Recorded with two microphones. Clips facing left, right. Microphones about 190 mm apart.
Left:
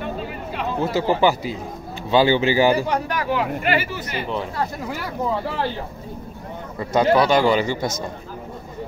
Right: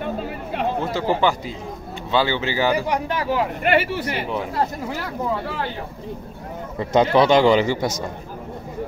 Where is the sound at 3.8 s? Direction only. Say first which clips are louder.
Right 4 dB; 60° right (ahead or behind).